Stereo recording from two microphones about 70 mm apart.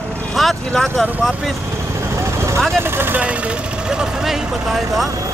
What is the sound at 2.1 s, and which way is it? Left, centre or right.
Vehicle, right.